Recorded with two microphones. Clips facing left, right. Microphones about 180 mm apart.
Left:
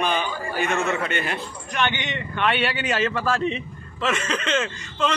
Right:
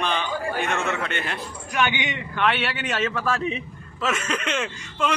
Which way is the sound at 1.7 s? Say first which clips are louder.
Right 1 dB; 10° right (ahead or behind).